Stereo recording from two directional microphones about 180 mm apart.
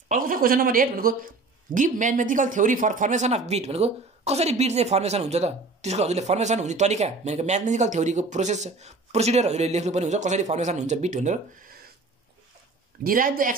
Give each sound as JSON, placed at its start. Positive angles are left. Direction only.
{"t": 0.1, "sound": "speech", "side_deg": -50}
{"t": 13.0, "sound": "speech", "side_deg": -50}